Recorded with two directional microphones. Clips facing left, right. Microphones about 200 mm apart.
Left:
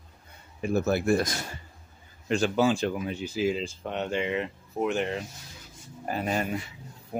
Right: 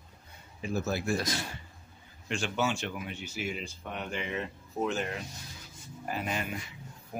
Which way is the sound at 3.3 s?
90° left.